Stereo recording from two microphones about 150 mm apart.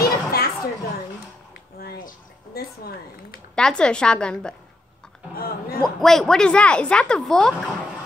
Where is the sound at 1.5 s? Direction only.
90° left.